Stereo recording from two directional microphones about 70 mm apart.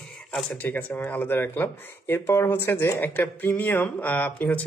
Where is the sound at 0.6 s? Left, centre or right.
Left.